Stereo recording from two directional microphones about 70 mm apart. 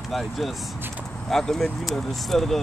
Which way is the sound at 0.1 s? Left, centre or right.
Centre.